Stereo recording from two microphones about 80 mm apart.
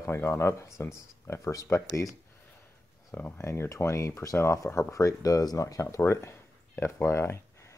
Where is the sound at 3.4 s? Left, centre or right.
Left.